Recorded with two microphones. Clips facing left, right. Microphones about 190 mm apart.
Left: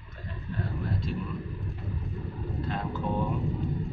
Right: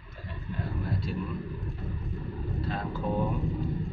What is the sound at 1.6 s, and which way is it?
Rumble, centre (ahead or behind).